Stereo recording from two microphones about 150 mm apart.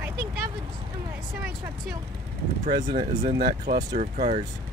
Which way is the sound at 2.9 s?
50° right (ahead or behind).